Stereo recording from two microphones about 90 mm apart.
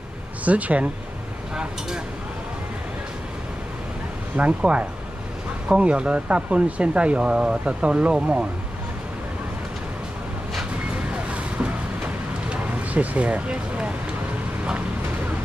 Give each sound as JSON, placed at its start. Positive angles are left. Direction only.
{"t": 0.5, "sound": "speech", "side_deg": -15}
{"t": 4.4, "sound": "speech", "side_deg": -15}
{"t": 10.5, "sound": "vehicle", "side_deg": -10}